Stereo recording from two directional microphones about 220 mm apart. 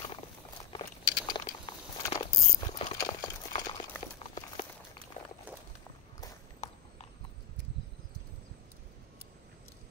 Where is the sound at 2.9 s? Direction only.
20° left (ahead or behind).